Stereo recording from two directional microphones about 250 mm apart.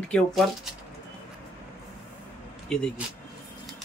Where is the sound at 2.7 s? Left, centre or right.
Centre.